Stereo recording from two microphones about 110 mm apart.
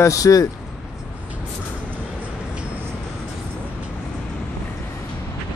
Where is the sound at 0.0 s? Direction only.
30° left (ahead or behind).